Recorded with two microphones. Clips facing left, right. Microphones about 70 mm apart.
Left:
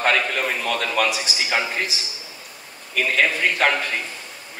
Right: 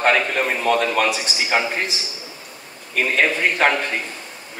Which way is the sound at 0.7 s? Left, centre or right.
Right.